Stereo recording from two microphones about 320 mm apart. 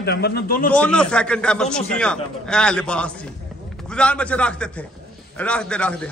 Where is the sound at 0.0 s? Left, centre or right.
Left.